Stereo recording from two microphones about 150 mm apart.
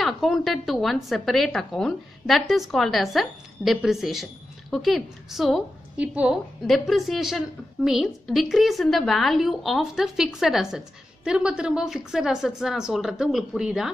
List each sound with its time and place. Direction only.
0.0 s speech: centre (ahead or behind)